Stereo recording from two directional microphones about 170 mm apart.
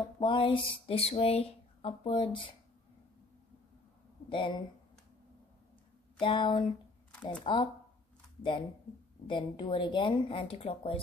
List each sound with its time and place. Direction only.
0.2 s speech: 30° left (ahead or behind)
4.3 s speech: 30° left (ahead or behind)
6.1 s speech: 30° left (ahead or behind)